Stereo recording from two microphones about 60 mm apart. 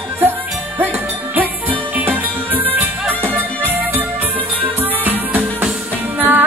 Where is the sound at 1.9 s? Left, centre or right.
Right.